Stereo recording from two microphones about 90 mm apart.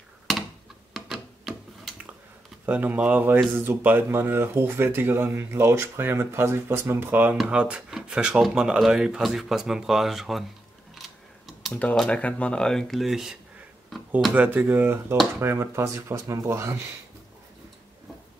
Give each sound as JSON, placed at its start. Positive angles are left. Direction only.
{"t": 0.3, "sound": "computer keyboard", "side_deg": 0}
{"t": 0.9, "sound": "tick-tock", "side_deg": 0}
{"t": 2.6, "sound": "speech", "side_deg": -20}
{"t": 11.0, "sound": "a sound", "side_deg": 0}
{"t": 11.7, "sound": "speech", "side_deg": 15}
{"t": 14.3, "sound": "speech", "side_deg": -20}